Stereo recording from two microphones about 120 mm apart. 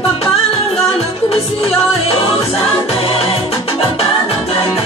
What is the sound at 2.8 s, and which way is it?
Music, 50° left (ahead or behind).